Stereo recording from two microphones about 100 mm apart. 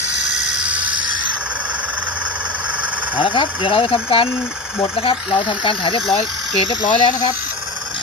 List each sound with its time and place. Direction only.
0.3 s a sound: 10° right (ahead or behind)
3.2 s speech: 60° left (ahead or behind)
6.7 s speech: 45° left (ahead or behind)